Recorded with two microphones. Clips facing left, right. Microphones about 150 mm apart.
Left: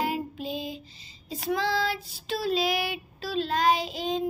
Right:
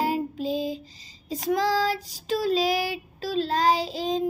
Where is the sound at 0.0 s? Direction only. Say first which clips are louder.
Right 4 dB; 35° right (ahead or behind).